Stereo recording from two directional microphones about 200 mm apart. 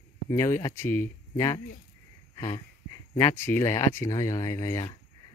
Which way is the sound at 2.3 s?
20° left (ahead or behind).